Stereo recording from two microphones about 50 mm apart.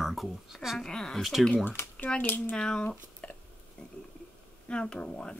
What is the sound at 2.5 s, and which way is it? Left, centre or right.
Speech, centre.